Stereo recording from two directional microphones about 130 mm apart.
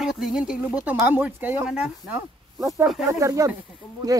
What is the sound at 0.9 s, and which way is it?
Speech, 15° right (ahead or behind).